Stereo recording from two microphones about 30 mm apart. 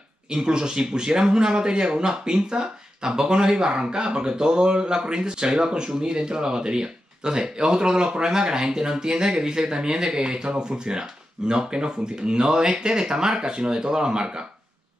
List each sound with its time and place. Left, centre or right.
0.3 s speech: right